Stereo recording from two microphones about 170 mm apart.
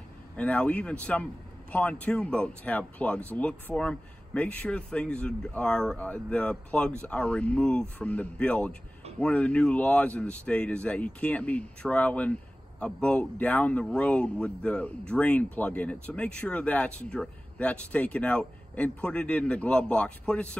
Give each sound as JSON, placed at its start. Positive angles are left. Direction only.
{"t": 0.4, "sound": "speech", "side_deg": 5}